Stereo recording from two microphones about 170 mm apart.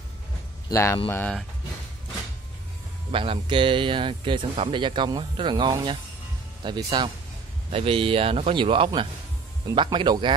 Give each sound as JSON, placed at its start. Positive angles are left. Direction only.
{"t": 0.7, "sound": "speech", "side_deg": 15}
{"t": 3.1, "sound": "speech", "side_deg": -30}